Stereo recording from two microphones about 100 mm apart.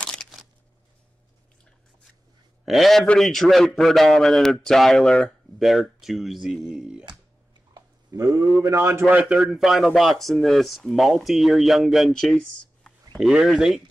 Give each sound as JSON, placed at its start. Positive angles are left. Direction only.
{"t": 0.0, "sound": "a sound", "side_deg": 10}
{"t": 2.6, "sound": "a man's voice", "side_deg": 0}
{"t": 7.7, "sound": "a sound", "side_deg": -40}
{"t": 8.6, "sound": "a man's voice", "side_deg": -30}
{"t": 9.0, "sound": "a man's voice", "side_deg": -10}
{"t": 13.2, "sound": "a man's voice", "side_deg": -5}